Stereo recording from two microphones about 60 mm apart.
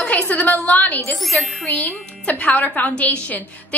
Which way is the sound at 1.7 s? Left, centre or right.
Left.